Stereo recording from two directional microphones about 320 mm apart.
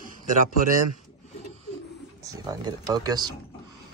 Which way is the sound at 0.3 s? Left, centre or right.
Right.